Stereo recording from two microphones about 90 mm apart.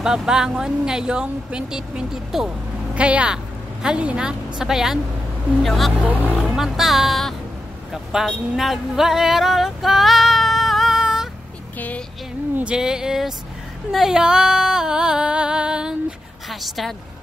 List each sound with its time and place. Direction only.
0.0 s speech: 5° right (ahead or behind)
12.5 s speech: 10° right (ahead or behind)
13.9 s music: 5° right (ahead or behind)
16.4 s a woman's voice: centre (ahead or behind)